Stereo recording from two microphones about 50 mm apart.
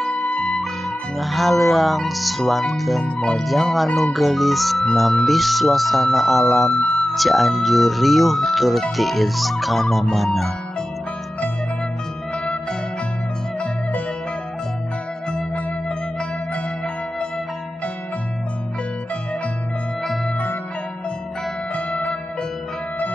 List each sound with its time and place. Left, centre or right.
0.1 s music: left
0.5 s speech: centre
3.1 s speech: left
3.3 s speech: centre
21.7 s music: left